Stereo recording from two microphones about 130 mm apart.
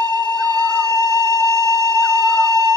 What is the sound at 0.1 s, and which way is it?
Music, 30° right (ahead or behind).